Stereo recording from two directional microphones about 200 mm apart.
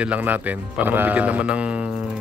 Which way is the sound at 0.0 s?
5° right (ahead or behind).